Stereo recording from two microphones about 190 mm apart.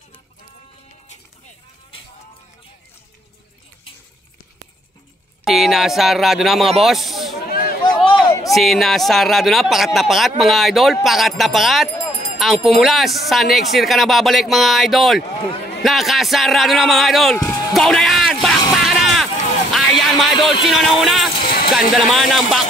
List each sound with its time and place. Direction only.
5.4 s speech: centre (ahead or behind)
7.3 s a sound: 50° left (ahead or behind)
7.8 s a sound: 25° left (ahead or behind)
8.5 s speech: centre (ahead or behind)
17.5 s music: 20° left (ahead or behind)
17.7 s music: centre (ahead or behind)
18.7 s a sound: centre (ahead or behind)
19.7 s music: centre (ahead or behind)
20.6 s speech: centre (ahead or behind)